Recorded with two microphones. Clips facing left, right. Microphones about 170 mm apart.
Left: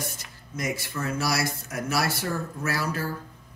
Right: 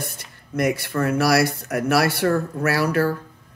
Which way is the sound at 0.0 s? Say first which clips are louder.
Right 2 dB; 65° right (ahead or behind).